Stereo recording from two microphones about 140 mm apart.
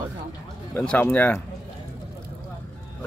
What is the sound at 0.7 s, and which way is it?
Speech, 10° left (ahead or behind).